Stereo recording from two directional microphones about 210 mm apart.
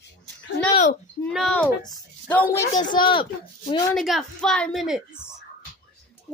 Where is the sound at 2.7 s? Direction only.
20° left (ahead or behind).